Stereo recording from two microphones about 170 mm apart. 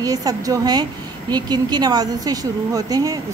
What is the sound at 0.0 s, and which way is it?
A woman's voice, 20° right (ahead or behind).